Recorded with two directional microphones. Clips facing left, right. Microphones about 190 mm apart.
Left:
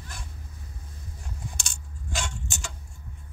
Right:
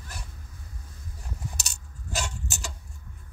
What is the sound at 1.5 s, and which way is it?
Keys jangling, 40° right (ahead or behind).